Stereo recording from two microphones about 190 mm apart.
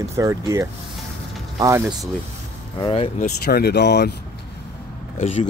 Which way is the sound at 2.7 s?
30° left (ahead or behind).